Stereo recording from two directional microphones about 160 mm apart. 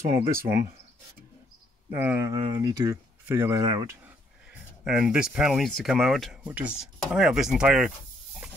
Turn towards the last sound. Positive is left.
turn(degrees=-5)  # may be behind; listen again after turning